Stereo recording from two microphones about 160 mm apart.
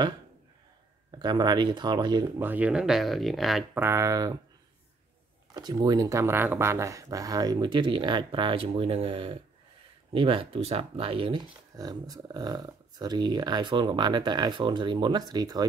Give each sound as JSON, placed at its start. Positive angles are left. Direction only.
{"t": 1.1, "sound": "speech", "side_deg": -25}
{"t": 2.4, "sound": "speech", "side_deg": -10}
{"t": 3.7, "sound": "speech", "side_deg": -15}
{"t": 5.5, "sound": "speech", "side_deg": -25}